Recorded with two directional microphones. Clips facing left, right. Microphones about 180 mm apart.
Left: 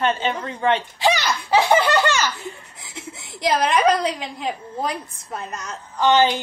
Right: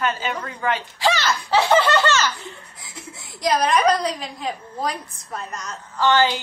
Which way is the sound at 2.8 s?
25° left (ahead or behind).